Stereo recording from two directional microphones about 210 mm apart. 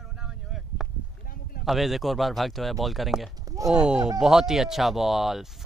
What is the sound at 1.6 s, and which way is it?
Speech, centre (ahead or behind).